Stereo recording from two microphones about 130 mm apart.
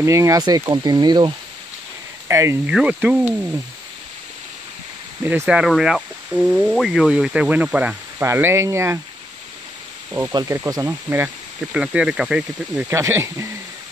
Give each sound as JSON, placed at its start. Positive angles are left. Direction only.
{"t": 0.0, "sound": "speech", "side_deg": -25}
{"t": 2.2, "sound": "speech", "side_deg": -20}
{"t": 2.6, "sound": "speech", "side_deg": -5}
{"t": 5.2, "sound": "speech", "side_deg": -15}
{"t": 5.6, "sound": "speech", "side_deg": -5}
{"t": 10.5, "sound": "speech", "side_deg": -25}
{"t": 11.7, "sound": "speech", "side_deg": -10}
{"t": 12.8, "sound": "speech", "side_deg": -20}